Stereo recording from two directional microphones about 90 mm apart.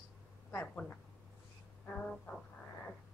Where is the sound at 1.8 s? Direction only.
10° left (ahead or behind).